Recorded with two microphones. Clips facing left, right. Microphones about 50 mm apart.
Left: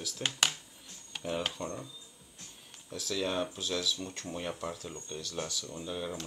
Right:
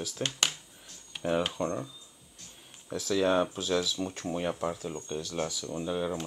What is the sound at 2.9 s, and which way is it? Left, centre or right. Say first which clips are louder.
Speech: right 7 dB; centre.